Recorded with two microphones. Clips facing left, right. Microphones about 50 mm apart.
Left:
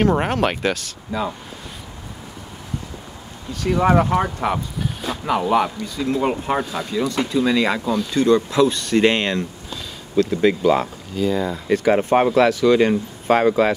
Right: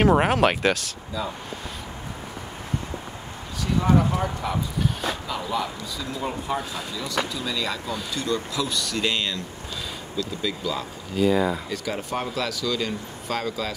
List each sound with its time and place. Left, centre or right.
0.0 s speech: centre
3.6 s speech: left
11.1 s speech: centre
11.7 s speech: left